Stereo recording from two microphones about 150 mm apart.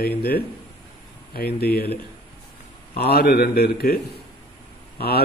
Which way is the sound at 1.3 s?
90° left.